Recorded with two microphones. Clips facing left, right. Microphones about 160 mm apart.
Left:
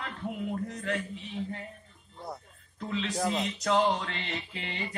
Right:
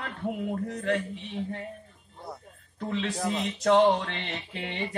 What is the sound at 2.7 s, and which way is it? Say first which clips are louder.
Speech: right 3 dB; 55° right (ahead or behind).